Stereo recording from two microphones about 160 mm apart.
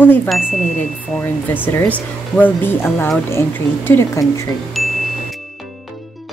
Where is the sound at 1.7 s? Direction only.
10° left (ahead or behind).